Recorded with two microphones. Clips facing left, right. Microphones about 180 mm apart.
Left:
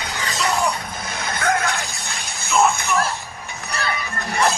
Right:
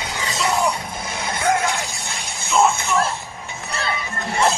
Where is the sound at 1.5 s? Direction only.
25° right (ahead or behind).